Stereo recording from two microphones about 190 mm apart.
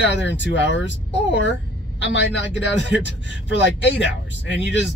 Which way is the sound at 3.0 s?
70° left (ahead or behind).